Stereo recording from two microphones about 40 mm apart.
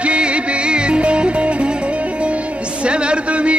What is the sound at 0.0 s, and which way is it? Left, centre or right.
Music, right.